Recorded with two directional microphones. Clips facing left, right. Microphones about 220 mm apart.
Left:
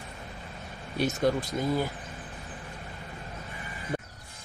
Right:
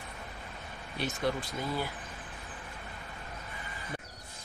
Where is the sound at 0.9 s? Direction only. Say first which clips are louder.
Left 6 dB; 45° left (ahead or behind).